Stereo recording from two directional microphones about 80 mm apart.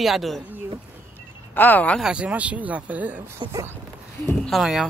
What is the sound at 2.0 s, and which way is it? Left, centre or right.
Speech, centre.